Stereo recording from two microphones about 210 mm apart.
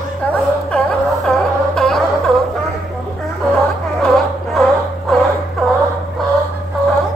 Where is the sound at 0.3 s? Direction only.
5° left (ahead or behind).